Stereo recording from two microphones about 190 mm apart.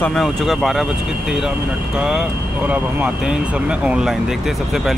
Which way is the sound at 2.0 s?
5° right (ahead or behind).